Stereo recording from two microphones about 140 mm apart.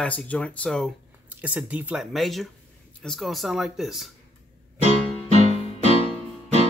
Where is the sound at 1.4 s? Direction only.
10° right (ahead or behind).